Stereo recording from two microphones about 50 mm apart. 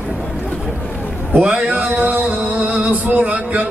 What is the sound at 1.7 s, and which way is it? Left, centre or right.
Music, right.